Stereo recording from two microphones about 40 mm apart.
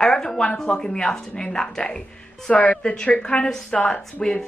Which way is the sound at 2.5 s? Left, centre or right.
Left.